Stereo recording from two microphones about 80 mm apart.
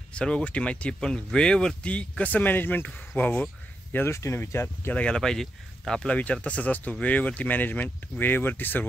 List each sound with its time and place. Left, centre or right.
0.1 s speech: centre
3.9 s speech: left
4.9 s speech: centre
6.1 s speech: centre